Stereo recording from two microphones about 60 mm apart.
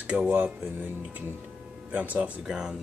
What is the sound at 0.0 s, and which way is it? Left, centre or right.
Speech, centre.